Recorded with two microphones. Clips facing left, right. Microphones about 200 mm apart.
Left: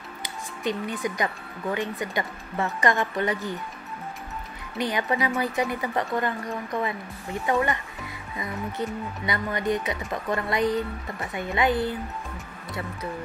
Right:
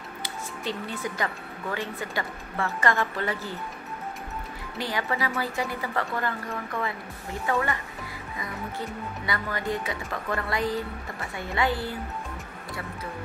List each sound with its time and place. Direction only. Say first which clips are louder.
0.2 s speech: left 4 dB; 15° left (ahead or behind)
4.7 s a woman's voice: left 4 dB; 20° left (ahead or behind)
9.2 s a woman's voice: left 3 dB; 20° left (ahead or behind)